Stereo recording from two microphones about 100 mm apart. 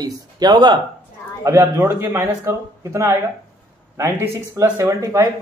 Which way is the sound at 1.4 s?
25° right (ahead or behind).